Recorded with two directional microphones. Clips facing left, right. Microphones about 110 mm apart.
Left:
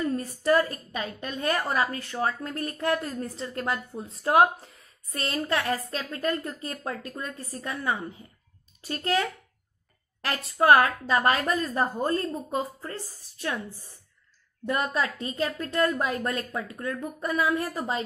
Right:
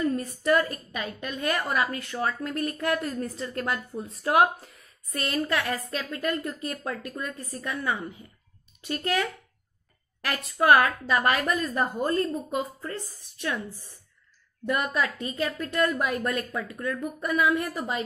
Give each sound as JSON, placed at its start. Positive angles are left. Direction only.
{"t": 0.0, "sound": "a woman's voice", "side_deg": 30}
{"t": 15.0, "sound": "a woman's voice", "side_deg": 30}